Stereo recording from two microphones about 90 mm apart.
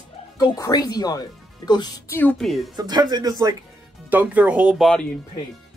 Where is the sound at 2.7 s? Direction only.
50° right (ahead or behind).